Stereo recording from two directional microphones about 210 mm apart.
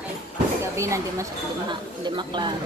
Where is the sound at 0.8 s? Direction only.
15° right (ahead or behind).